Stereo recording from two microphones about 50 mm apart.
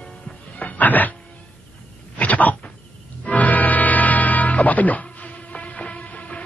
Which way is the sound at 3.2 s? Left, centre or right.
Left.